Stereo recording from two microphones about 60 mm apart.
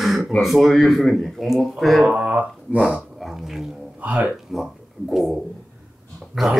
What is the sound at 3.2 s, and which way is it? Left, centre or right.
Speech, centre.